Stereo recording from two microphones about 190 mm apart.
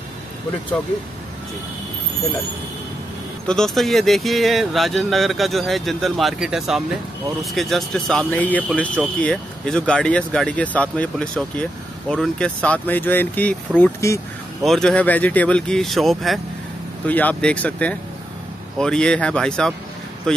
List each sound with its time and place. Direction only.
3.4 s speech: 5° left (ahead or behind)
14.6 s speech: centre (ahead or behind)